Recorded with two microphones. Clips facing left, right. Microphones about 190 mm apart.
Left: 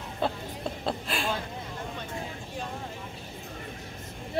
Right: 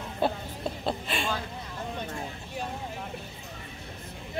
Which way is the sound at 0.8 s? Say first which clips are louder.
Even; centre (ahead or behind).